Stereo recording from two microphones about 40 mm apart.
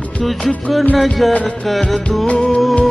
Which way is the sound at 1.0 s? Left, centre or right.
Centre.